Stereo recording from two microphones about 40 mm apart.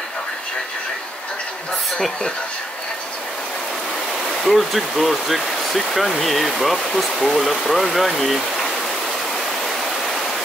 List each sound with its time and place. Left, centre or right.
4.4 s speech: centre
9.6 s waterfall: centre